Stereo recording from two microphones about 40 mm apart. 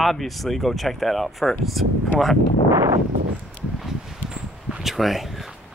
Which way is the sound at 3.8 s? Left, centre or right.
Centre.